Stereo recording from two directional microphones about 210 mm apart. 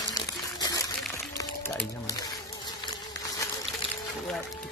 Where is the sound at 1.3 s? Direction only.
10° left (ahead or behind).